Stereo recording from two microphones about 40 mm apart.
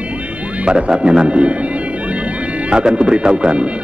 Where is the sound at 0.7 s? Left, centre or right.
Right.